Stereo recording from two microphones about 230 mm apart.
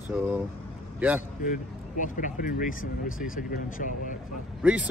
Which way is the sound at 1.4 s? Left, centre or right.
Left.